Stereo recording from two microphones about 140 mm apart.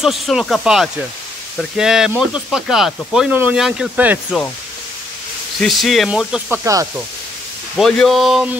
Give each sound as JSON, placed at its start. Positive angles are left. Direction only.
{"t": 0.0, "sound": "speech", "side_deg": 0}
{"t": 5.6, "sound": "speech", "side_deg": 0}
{"t": 6.6, "sound": "speech", "side_deg": -20}
{"t": 7.7, "sound": "speech", "side_deg": 0}